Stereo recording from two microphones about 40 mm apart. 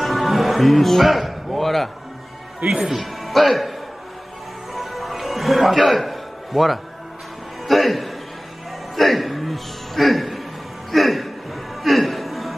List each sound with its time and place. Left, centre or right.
0.0 s music: centre
2.9 s speech: centre
4.7 s music: centre
5.8 s a man's voice: centre
7.6 s music: centre
10.9 s a sound: centre
11.8 s chuckle: centre